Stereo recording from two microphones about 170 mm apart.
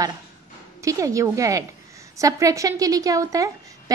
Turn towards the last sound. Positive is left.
turn(degrees=-20)  # may be behind; listen again after turning